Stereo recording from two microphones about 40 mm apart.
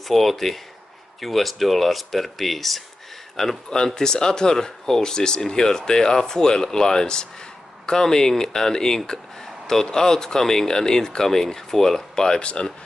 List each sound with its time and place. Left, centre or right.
0.1 s speech: centre
3.7 s speech: centre